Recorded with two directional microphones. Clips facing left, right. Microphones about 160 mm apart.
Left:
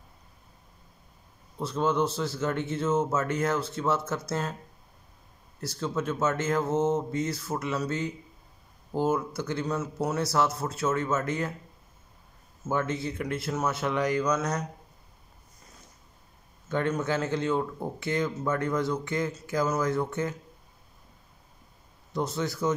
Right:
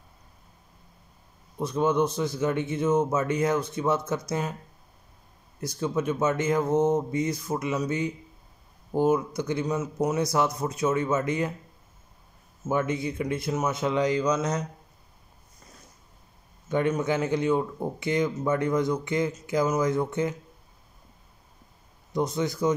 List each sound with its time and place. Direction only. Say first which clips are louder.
1.6 s a man's voice: right 3 dB; 15° right (ahead or behind)
5.6 s a man's voice: right 3 dB; 15° right (ahead or behind)
12.6 s a man's voice: right 3 dB; 15° right (ahead or behind)
16.6 s a man's voice: right 3 dB; 15° right (ahead or behind)
22.1 s a man's voice: right 3 dB; 15° right (ahead or behind)